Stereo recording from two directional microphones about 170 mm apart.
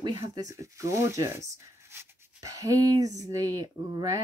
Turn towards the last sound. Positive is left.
turn(degrees=-20)  # may be behind; listen again after turning